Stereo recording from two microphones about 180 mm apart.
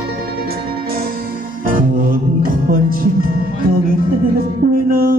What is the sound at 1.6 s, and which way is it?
Music, 50° right (ahead or behind).